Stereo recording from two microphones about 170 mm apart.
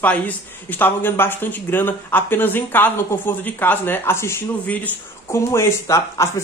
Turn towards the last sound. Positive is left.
turn(degrees=15)  # may be behind; listen again after turning